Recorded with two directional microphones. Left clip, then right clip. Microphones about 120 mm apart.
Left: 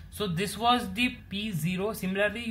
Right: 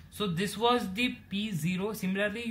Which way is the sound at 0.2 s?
40° left (ahead or behind).